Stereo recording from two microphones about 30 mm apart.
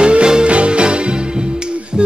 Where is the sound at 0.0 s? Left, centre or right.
Right.